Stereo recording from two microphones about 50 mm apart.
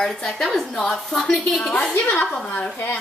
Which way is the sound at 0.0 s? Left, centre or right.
Centre.